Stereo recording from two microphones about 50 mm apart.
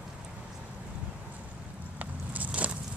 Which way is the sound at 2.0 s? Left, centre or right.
Right.